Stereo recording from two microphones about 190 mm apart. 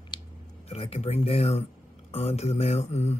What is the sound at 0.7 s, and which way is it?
Mantra, 30° left (ahead or behind).